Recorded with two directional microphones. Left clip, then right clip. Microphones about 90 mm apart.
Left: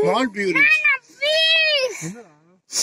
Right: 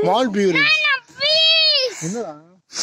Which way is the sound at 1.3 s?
50° right (ahead or behind).